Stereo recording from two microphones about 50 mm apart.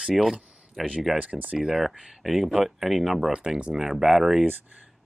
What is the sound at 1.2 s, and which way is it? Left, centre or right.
Speech, right.